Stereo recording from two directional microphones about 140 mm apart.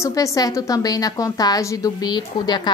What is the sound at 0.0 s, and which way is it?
A woman's voice, 25° left (ahead or behind).